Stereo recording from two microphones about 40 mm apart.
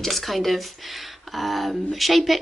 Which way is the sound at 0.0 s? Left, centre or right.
Centre.